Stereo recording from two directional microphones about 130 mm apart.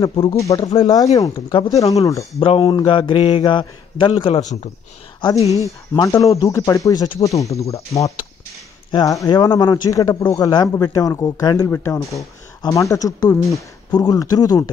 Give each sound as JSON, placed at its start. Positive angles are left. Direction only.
{"t": 0.0, "sound": "a man's voice", "side_deg": 40}
{"t": 0.3, "sound": "a man's voice", "side_deg": 25}
{"t": 5.5, "sound": "speech", "side_deg": 25}